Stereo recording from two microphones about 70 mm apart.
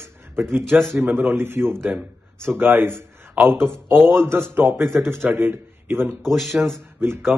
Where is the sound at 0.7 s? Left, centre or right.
Right.